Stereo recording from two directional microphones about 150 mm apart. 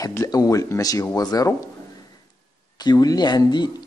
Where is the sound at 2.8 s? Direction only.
25° left (ahead or behind).